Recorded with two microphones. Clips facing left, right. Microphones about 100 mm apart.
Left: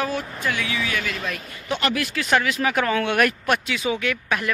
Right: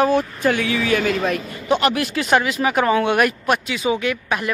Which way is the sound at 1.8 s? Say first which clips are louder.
Even; 20° right (ahead or behind).